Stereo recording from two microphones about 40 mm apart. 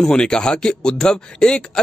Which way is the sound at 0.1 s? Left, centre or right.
Left.